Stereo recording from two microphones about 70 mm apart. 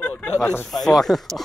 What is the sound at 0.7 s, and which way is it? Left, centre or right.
Speech, centre.